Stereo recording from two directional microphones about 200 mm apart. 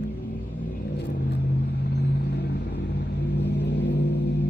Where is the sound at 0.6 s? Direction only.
50° left (ahead or behind).